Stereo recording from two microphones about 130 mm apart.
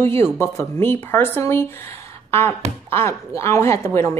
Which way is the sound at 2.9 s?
20° left (ahead or behind).